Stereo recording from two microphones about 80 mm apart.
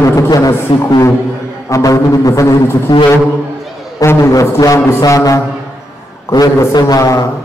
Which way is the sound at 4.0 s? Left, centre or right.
Left.